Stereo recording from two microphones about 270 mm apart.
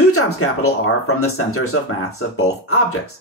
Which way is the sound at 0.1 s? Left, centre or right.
Left.